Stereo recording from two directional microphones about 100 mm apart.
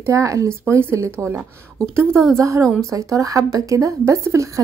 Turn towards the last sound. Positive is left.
turn(degrees=-30)  # may be behind; listen again after turning